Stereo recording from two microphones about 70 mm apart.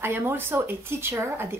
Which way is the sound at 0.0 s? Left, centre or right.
Right.